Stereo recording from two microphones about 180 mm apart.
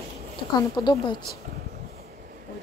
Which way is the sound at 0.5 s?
25° left (ahead or behind).